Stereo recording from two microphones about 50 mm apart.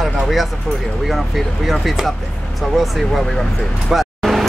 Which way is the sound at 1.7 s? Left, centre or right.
Centre.